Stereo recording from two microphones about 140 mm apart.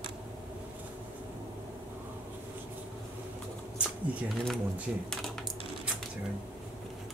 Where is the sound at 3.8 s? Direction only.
10° right (ahead or behind).